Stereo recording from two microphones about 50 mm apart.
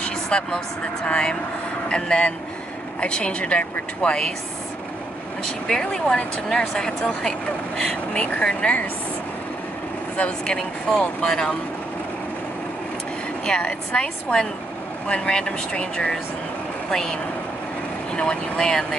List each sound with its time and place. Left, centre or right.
0.0 s vehicle: left
1.0 s speech: centre
5.7 s speech: centre
10.4 s speech: centre
13.5 s speech: centre